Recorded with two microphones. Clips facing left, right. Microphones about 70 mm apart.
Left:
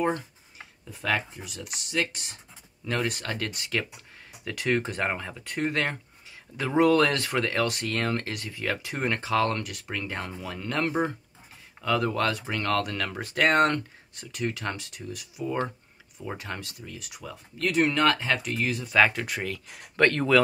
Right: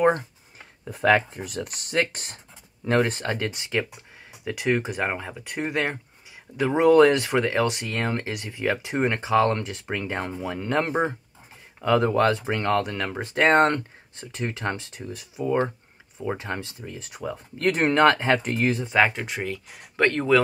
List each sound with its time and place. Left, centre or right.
0.8 s speech: right
2.8 s speech: right
18.9 s speech: centre